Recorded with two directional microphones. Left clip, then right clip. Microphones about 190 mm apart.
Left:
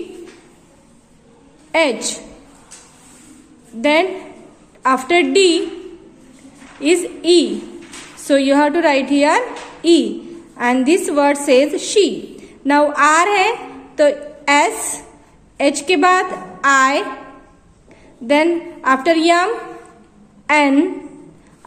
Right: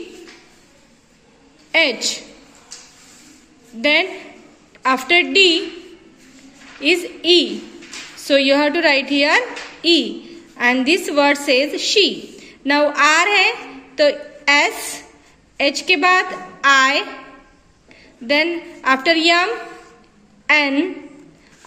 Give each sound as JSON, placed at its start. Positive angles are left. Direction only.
{"t": 1.7, "sound": "a woman's voice", "side_deg": 0}
{"t": 3.8, "sound": "a woman's voice", "side_deg": -5}
{"t": 6.8, "sound": "a woman's voice", "side_deg": 0}
{"t": 9.8, "sound": "a sound", "side_deg": 0}
{"t": 10.6, "sound": "a woman's voice", "side_deg": 0}
{"t": 18.2, "sound": "a woman's voice", "side_deg": -5}